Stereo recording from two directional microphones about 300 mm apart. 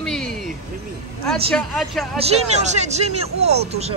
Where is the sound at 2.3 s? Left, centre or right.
Right.